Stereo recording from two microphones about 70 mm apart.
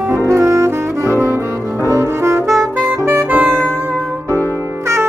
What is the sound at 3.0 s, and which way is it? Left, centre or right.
Music, right.